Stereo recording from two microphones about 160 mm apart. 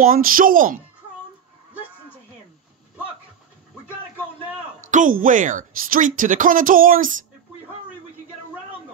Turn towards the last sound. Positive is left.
turn(degrees=-60)  # may be behind; listen again after turning